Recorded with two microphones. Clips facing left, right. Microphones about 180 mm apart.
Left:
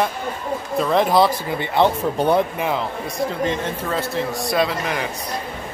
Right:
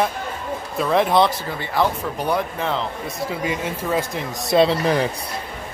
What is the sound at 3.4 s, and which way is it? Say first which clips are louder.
Speech: left 1 dB; 10° right (ahead or behind).